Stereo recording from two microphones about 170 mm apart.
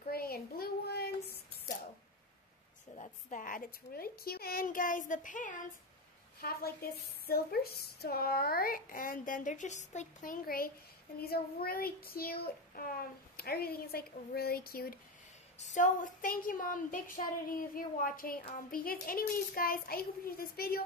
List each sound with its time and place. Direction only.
0.0 s child singing: 60° left (ahead or behind)
3.0 s a woman's voice: 50° left (ahead or behind)
6.4 s a woman's voice: 60° left (ahead or behind)
15.6 s a woman's voice: 45° left (ahead or behind); by 20.8 s 60° left (ahead or behind)